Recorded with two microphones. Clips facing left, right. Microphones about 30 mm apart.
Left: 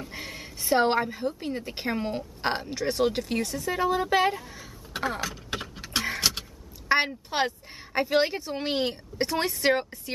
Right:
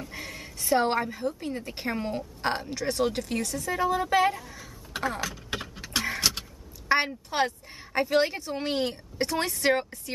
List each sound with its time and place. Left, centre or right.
0.0 s bleat: centre
1.7 s a woman's voice: centre